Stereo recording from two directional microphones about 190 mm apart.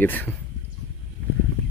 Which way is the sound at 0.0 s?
10° left (ahead or behind).